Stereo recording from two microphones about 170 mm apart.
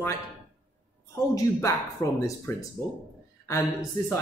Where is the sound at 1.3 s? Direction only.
20° left (ahead or behind).